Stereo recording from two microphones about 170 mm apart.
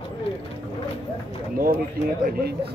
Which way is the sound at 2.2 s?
65° right (ahead or behind).